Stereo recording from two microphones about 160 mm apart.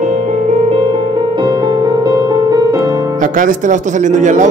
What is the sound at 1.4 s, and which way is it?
Music, 25° right (ahead or behind).